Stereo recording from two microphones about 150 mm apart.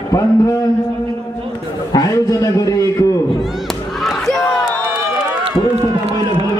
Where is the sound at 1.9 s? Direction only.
25° left (ahead or behind).